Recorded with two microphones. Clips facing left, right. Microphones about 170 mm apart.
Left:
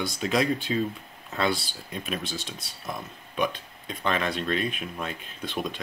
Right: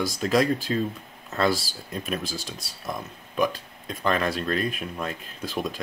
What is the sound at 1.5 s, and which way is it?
Speech, 40° right (ahead or behind).